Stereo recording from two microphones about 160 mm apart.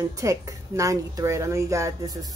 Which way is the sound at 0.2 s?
20° right (ahead or behind).